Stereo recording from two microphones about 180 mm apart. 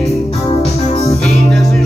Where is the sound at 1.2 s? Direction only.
Centre (ahead or behind).